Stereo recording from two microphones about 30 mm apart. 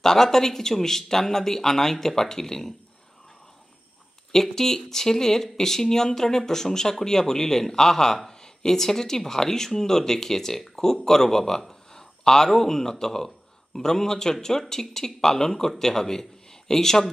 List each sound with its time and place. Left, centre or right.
0.0 s speech: centre
4.3 s a man's voice: centre